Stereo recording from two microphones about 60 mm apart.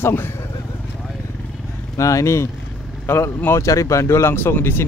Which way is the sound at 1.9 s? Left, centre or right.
Left.